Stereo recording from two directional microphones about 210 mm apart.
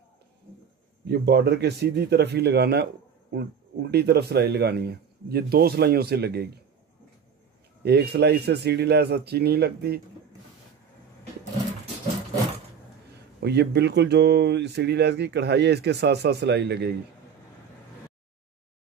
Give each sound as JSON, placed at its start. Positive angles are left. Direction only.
{"t": 1.0, "sound": "speech", "side_deg": -50}
{"t": 7.8, "sound": "speech", "side_deg": -50}
{"t": 13.4, "sound": "speech", "side_deg": -50}